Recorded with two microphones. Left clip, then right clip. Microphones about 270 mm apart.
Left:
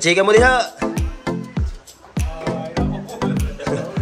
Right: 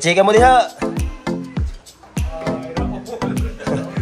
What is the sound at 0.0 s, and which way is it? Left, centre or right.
Music, centre.